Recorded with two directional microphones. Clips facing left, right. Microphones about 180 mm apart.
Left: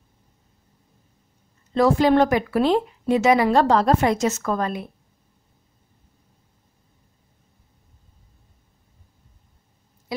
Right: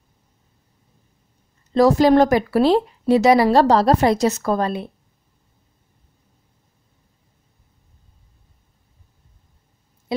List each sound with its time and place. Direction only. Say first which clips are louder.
1.7 s speech: right 3 dB; 40° right (ahead or behind)